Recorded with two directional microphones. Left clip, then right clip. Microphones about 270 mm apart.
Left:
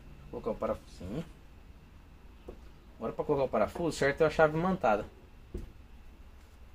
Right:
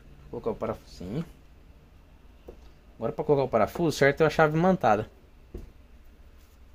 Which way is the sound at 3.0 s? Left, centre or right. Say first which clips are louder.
Right 5 dB; right.